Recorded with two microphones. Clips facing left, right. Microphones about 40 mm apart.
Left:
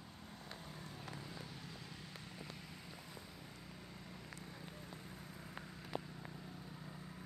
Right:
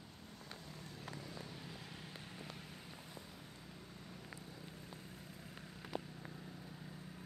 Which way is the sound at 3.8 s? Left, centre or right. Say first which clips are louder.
Even; left.